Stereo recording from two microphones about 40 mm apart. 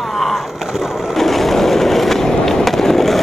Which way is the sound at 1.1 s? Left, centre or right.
Centre.